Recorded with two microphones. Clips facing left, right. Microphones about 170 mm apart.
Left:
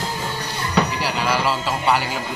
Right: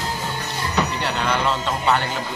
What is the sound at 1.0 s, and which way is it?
Speech, 5° left (ahead or behind).